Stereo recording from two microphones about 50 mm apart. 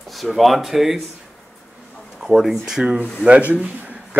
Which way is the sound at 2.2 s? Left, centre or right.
Centre.